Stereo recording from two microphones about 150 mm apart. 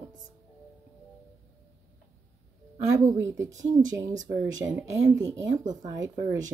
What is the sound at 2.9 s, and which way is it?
A woman's voice, 20° right (ahead or behind).